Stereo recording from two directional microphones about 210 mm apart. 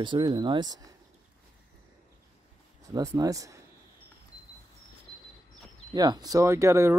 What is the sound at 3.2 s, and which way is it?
Speech, 15° right (ahead or behind).